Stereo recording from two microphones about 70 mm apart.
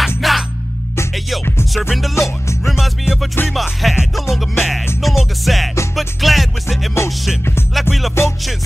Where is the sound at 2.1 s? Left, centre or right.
Left.